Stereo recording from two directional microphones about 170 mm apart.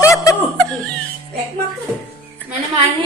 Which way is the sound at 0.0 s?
20° left (ahead or behind).